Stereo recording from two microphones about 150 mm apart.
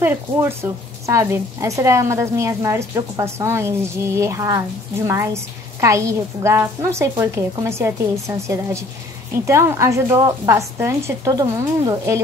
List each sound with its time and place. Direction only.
0.0 s a woman's voice: 15° right (ahead or behind)